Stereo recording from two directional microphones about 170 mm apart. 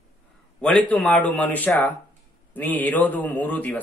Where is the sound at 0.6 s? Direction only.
5° left (ahead or behind).